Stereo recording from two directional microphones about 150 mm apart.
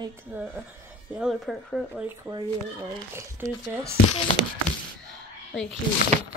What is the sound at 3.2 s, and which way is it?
Speech, 20° right (ahead or behind).